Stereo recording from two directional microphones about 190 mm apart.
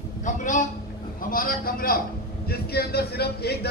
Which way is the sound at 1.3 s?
50° left (ahead or behind).